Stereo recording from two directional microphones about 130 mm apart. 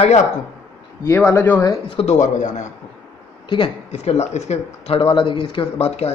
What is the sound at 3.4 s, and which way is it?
Speech, 40° left (ahead or behind).